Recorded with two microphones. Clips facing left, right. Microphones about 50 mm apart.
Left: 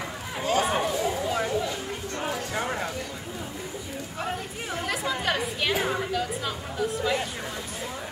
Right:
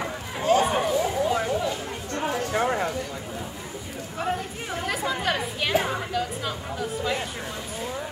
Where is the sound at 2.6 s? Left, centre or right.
Centre.